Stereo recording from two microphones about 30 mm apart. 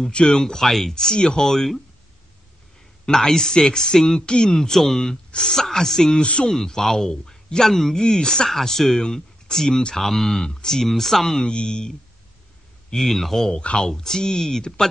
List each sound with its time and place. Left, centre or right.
0.1 s speech: left
0.4 s speech: centre
0.9 s speech: left
3.1 s speech: centre
5.1 s speech: left
8.5 s speech: centre
10.5 s speech: centre
11.4 s speech: left
12.9 s speech: centre